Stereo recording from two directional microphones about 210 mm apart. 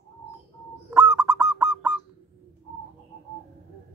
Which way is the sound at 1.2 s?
15° right (ahead or behind).